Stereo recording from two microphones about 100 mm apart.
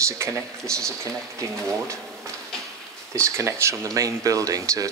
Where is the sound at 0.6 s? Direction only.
5° left (ahead or behind).